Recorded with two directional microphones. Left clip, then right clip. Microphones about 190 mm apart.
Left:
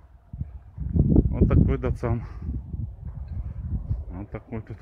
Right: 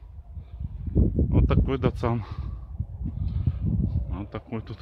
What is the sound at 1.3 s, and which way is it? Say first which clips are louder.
Speech: left 1 dB; 15° right (ahead or behind).